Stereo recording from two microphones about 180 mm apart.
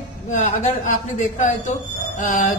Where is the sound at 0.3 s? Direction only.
45° left (ahead or behind).